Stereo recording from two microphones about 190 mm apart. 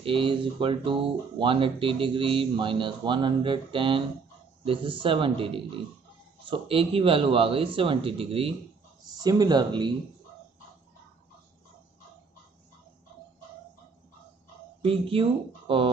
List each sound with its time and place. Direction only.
0.0 s speech: 25° right (ahead or behind)
14.8 s speech: 30° right (ahead or behind)